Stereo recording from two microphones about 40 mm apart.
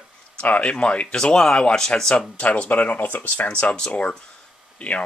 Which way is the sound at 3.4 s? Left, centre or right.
Left.